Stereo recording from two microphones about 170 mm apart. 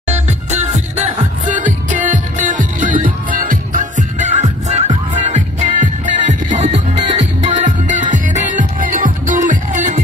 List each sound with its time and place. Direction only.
0.1 s music: 40° right (ahead or behind)